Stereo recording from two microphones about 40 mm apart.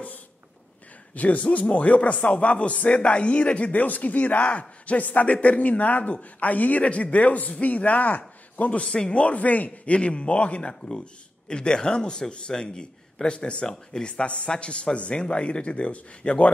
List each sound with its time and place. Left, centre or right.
1.1 s a man's voice: left
3.7 s a man's voice: left
8.8 s speech: centre
9.1 s a man's voice: left
9.9 s a man's voice: left
14.2 s a man's voice: left